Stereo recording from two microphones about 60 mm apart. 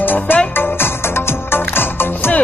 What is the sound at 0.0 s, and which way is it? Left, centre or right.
Music, left.